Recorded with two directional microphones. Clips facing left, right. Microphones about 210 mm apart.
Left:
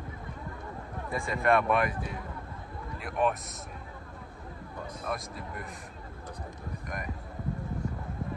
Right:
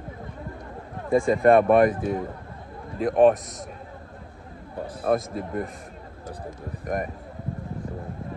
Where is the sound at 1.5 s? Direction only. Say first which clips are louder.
Right 9 dB; 50° right (ahead or behind).